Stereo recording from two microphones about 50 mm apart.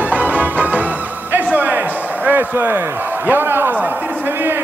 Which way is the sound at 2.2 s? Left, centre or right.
Right.